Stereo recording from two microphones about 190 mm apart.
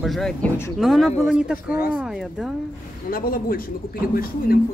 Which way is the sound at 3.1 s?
50° left (ahead or behind).